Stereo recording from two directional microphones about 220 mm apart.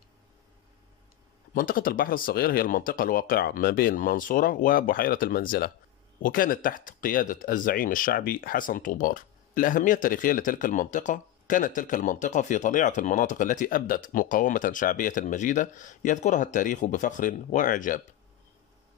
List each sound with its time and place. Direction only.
1.5 s speech: 40° left (ahead or behind)